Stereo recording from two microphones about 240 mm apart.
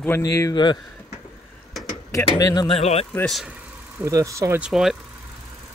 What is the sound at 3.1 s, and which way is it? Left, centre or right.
Speech, centre.